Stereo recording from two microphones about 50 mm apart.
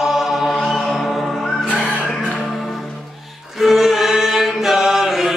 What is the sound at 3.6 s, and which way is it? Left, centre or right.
Chant, centre.